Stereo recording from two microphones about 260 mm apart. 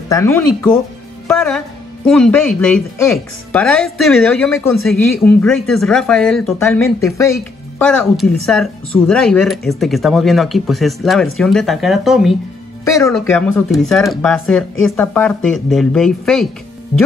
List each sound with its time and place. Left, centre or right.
0.1 s speech: centre
8.0 s speech: centre
12.8 s speech: centre